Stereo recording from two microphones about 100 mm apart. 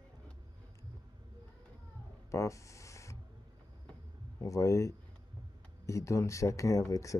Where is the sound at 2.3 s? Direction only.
30° left (ahead or behind).